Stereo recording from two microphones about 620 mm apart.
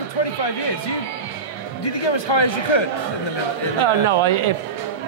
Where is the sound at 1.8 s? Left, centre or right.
Left.